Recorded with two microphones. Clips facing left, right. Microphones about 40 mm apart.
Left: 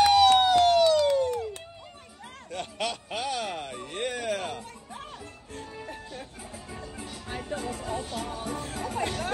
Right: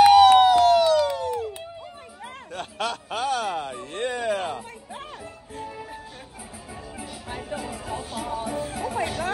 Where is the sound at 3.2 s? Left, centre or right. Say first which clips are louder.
Right 7 dB; right.